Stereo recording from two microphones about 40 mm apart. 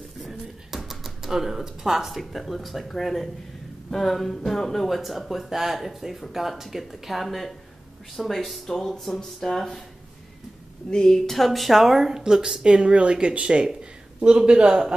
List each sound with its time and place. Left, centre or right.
0.2 s speech: centre
4.8 s speech: centre
8.6 s speech: centre
10.9 s a man's voice: centre; by 15.0 s right